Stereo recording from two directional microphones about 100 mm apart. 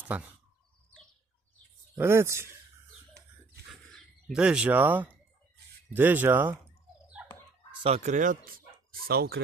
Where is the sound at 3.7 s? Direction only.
Centre (ahead or behind).